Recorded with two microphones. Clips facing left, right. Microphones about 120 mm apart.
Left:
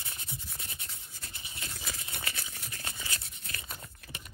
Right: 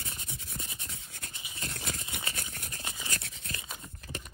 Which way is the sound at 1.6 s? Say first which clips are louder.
Right 4 dB; 60° right (ahead or behind).